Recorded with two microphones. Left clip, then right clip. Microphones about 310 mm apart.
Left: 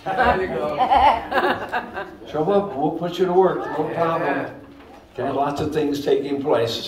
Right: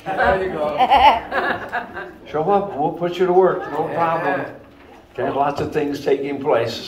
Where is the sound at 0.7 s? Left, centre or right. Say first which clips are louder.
Right 3 dB; right.